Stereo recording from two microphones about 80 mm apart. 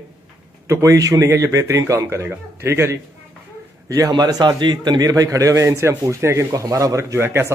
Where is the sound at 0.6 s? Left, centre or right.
Right.